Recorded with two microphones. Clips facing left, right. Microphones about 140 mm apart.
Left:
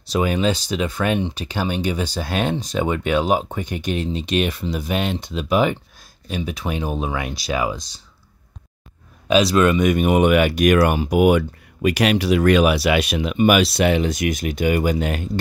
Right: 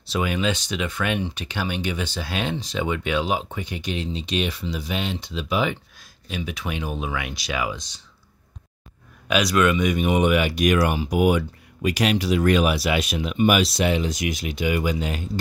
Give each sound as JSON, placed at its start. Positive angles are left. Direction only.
{"t": 0.0, "sound": "speech", "side_deg": 40}
{"t": 9.3, "sound": "speech", "side_deg": 30}
{"t": 9.8, "sound": "speech", "side_deg": 50}